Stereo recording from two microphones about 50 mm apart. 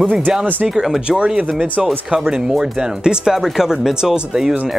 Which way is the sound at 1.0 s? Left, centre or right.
Centre.